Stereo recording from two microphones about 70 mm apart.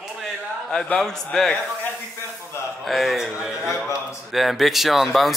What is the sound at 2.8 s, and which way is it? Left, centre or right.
Speech, centre.